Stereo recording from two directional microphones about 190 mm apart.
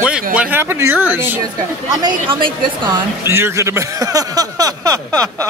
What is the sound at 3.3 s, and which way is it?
Speech, 15° right (ahead or behind).